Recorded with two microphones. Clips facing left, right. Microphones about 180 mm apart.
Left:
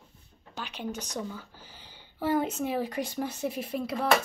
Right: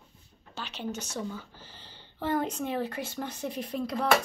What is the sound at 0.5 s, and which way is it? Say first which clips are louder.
Speech: even; 10° left (ahead or behind).